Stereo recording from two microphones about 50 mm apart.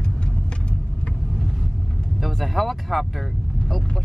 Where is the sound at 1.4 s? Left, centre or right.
Centre.